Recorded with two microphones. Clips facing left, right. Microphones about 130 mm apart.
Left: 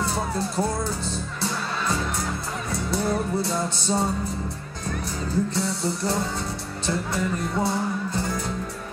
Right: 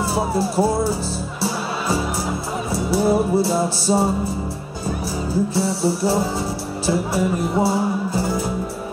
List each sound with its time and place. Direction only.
0.0 s speech: 5° right (ahead or behind)
8.1 s music: 5° right (ahead or behind)